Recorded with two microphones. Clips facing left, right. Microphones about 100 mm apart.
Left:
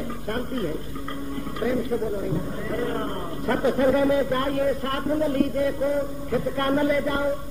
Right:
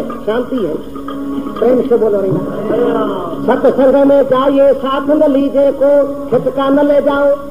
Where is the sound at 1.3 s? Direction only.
55° right (ahead or behind).